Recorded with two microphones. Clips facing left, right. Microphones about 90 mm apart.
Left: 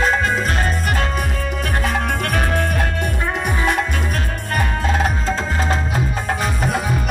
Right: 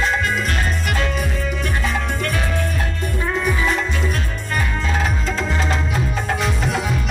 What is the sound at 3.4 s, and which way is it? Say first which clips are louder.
Music: left 2 dB; 60° left (ahead or behind).